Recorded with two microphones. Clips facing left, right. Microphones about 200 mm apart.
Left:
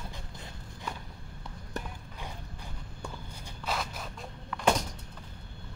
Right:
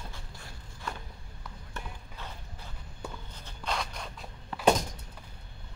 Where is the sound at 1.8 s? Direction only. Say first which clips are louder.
Left 5 dB; 40° left (ahead or behind).